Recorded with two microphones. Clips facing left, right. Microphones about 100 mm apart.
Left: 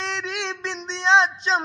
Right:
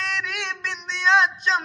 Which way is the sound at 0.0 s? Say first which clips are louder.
Left 1 dB; 25° left (ahead or behind).